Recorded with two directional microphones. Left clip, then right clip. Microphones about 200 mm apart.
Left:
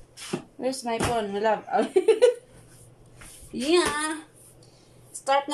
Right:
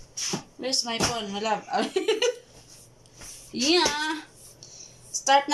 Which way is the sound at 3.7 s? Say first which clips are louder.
Even; 5° left (ahead or behind).